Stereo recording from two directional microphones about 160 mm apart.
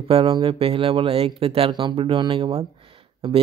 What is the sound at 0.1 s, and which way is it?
Speech, 35° right (ahead or behind).